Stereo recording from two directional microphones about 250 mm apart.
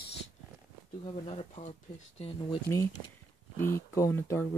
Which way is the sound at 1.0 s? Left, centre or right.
Left.